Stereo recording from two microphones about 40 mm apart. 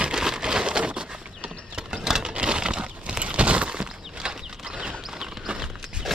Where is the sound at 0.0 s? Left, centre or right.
Centre.